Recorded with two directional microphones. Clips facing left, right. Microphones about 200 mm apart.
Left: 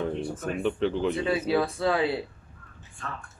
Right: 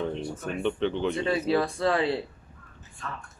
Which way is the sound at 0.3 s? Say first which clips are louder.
Left 1 dB; centre (ahead or behind).